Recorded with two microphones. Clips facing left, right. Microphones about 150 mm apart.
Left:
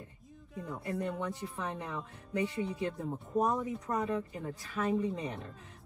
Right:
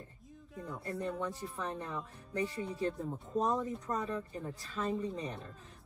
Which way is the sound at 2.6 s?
Centre (ahead or behind).